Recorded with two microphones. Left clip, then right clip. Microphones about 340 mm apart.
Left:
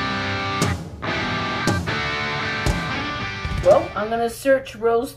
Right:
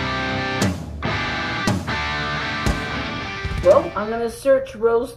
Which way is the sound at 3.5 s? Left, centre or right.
Centre.